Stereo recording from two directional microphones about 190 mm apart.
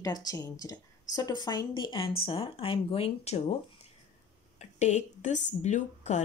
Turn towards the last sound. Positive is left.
turn(degrees=40)  # may be behind; listen again after turning